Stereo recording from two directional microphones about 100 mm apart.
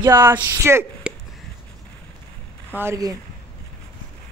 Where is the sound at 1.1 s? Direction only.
10° right (ahead or behind).